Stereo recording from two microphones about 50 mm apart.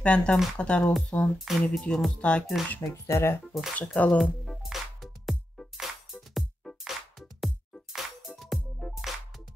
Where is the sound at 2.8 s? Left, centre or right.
Left.